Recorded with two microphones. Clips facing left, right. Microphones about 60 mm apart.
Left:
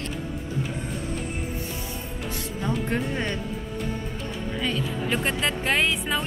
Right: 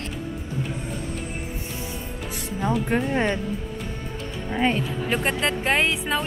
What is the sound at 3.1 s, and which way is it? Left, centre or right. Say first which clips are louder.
Speech: right 5 dB; right.